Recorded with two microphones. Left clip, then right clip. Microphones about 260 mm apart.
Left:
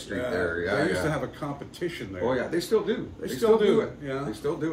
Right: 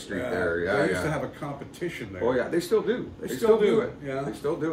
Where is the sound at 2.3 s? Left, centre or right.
Centre.